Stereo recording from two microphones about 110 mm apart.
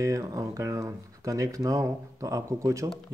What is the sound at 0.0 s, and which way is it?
A man's voice, 30° right (ahead or behind).